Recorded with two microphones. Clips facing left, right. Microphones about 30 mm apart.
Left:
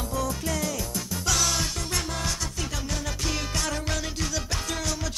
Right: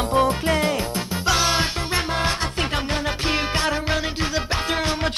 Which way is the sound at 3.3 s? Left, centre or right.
Right.